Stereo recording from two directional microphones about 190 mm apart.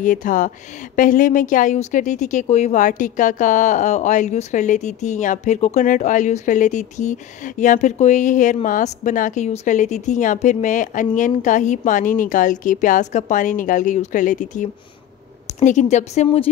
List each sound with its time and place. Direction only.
0.0 s a woman's voice: 45° left (ahead or behind)